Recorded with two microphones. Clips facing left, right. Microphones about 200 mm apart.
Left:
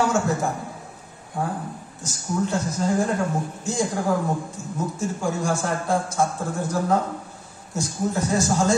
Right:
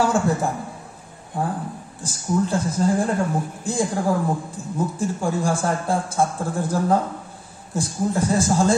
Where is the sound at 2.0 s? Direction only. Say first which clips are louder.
Right 3 dB; 30° right (ahead or behind).